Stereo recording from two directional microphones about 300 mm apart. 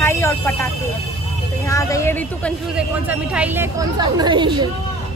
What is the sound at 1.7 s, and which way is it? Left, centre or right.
Speech, centre.